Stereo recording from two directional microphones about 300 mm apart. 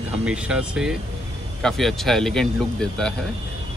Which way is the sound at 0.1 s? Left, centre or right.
Centre.